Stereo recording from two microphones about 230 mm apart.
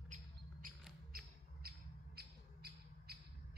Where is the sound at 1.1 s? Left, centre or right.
Right.